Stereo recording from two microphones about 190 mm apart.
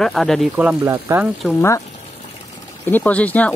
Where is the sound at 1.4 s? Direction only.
15° left (ahead or behind).